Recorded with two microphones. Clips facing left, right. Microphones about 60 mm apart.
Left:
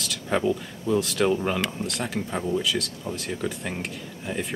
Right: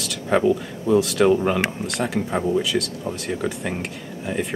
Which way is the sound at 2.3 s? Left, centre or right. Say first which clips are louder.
Right 5 dB; centre.